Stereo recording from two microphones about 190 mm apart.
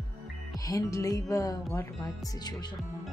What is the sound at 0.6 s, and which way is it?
Speech, 20° left (ahead or behind).